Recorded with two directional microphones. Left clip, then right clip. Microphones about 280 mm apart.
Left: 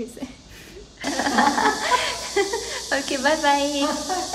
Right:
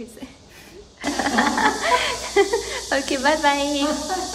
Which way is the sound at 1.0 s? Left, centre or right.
Centre.